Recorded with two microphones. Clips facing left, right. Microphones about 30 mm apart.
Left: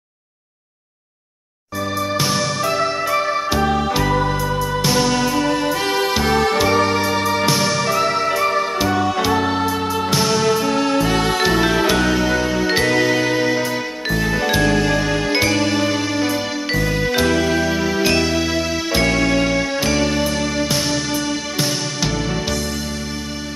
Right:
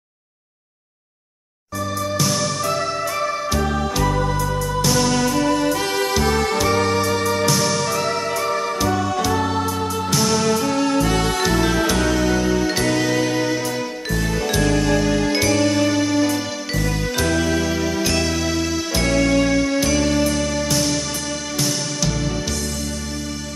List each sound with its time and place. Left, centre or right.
2.1 s music: left
14.0 s jingle: left
16.7 s music: left